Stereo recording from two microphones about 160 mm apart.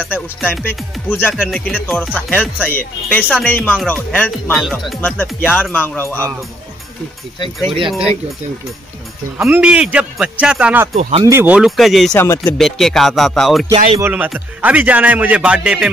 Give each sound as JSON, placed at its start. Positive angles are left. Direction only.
{"t": 0.7, "sound": "speech", "side_deg": 10}
{"t": 9.4, "sound": "a man's voice", "side_deg": -5}
{"t": 11.0, "sound": "speech", "side_deg": -40}
{"t": 11.2, "sound": "music", "side_deg": -10}
{"t": 12.1, "sound": "speech", "side_deg": 15}
{"t": 12.5, "sound": "music", "side_deg": 0}
{"t": 13.9, "sound": "a man's voice", "side_deg": -10}